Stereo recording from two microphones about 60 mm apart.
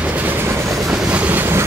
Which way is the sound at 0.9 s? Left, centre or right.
Centre.